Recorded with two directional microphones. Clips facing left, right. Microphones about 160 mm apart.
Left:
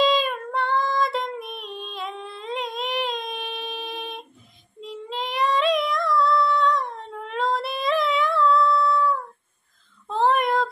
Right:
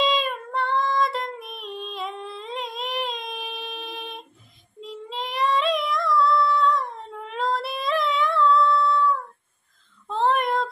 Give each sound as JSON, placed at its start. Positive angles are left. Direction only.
{"t": 0.0, "sound": "female singing", "side_deg": 0}
{"t": 10.0, "sound": "child singing", "side_deg": 0}